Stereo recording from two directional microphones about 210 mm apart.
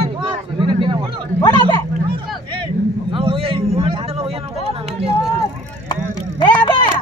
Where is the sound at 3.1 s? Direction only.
25° right (ahead or behind).